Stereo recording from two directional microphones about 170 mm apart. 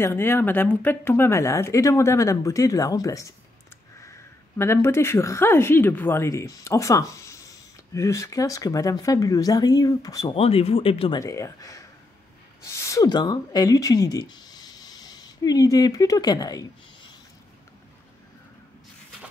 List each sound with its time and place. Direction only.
0.0 s a woman's voice: 15° left (ahead or behind)
4.6 s speech: 15° left (ahead or behind)
10.3 s speech: 35° left (ahead or behind)
11.1 s speech: 20° left (ahead or behind)